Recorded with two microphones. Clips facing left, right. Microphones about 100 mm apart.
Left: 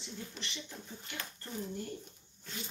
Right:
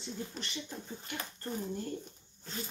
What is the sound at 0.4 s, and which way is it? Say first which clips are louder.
Speech: right 3 dB; 40° right (ahead or behind).